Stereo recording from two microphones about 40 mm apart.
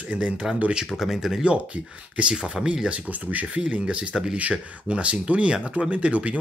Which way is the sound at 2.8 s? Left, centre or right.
Right.